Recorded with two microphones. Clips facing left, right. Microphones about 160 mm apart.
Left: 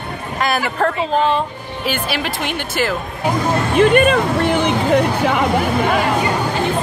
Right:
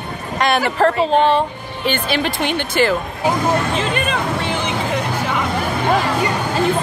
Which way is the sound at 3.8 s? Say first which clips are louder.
Left 8 dB; 55° left (ahead or behind).